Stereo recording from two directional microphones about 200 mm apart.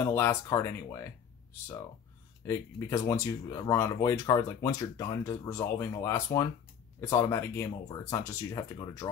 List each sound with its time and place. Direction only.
0.0 s speech: 15° left (ahead or behind)
2.4 s speech: 15° left (ahead or behind)